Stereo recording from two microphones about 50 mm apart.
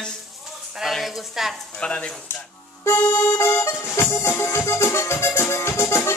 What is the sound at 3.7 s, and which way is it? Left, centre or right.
Music, left.